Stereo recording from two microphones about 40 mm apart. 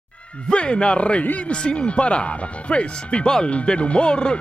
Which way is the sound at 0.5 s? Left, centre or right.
Left.